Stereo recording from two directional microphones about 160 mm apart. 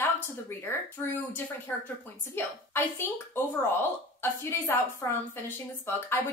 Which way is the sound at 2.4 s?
15° left (ahead or behind).